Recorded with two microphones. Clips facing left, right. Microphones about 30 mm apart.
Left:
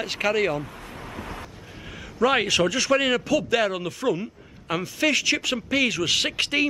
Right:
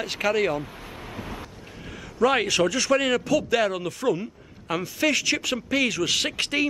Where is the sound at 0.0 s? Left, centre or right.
Centre.